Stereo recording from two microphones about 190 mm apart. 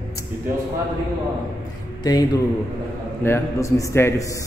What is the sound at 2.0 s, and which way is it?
A man's voice, 20° left (ahead or behind).